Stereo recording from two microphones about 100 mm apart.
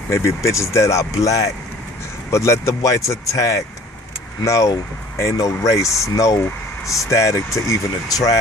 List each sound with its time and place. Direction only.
0.1 s speech: 30° left (ahead or behind)